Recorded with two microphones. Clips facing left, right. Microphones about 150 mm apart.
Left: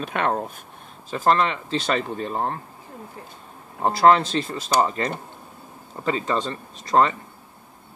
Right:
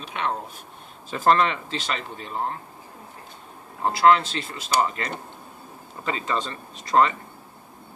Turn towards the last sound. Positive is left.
turn(degrees=35)  # may be behind; listen again after turning